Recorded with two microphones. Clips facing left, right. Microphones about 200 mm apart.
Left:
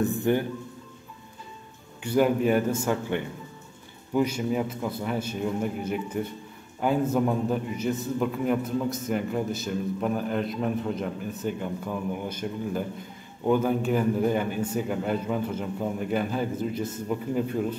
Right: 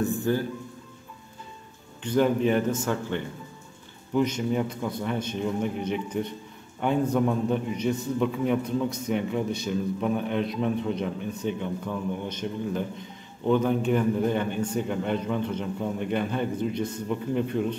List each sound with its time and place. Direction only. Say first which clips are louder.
0.2 s speech: left 2 dB; 20° left (ahead or behind)
2.0 s a man's voice: even; 10° left (ahead or behind)